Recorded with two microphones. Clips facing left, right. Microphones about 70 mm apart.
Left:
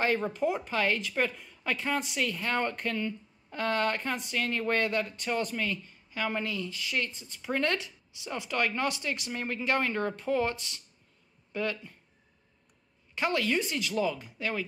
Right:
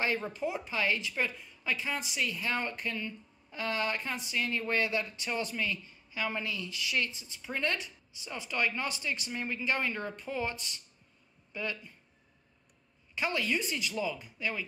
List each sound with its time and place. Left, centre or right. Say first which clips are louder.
0.0 s speech: left 4 dB; left
13.1 s speech: left 3 dB; left